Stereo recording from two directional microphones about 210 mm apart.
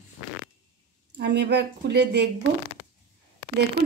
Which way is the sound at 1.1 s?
55° right (ahead or behind).